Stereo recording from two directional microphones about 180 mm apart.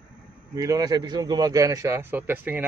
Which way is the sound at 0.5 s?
20° right (ahead or behind).